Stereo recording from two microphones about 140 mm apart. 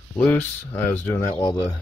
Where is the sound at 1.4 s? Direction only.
25° left (ahead or behind).